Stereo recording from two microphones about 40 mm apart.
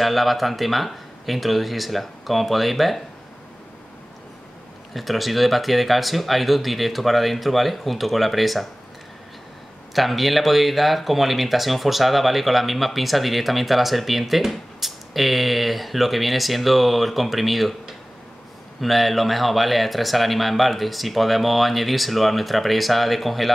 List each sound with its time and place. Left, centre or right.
0.0 s speech: centre
4.9 s speech: centre
9.9 s speech: centre